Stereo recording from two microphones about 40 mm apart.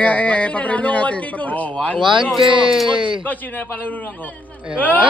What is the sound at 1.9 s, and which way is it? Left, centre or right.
Speech, centre.